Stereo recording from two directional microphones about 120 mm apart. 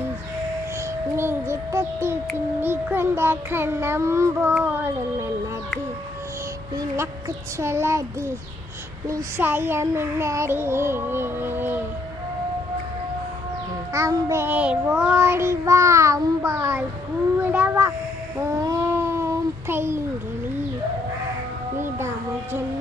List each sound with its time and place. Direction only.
1.1 s a child's voice: 20° right (ahead or behind)
7.0 s a child's voice: 25° right (ahead or behind)
9.4 s a child's voice: 20° right (ahead or behind)
13.9 s a child's voice: 25° right (ahead or behind)
18.6 s a sound: 25° right (ahead or behind)
21.7 s music: 20° right (ahead or behind)